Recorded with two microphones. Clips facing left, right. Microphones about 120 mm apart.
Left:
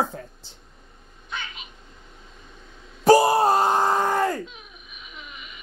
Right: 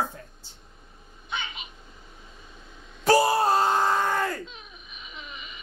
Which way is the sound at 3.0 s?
15° left (ahead or behind).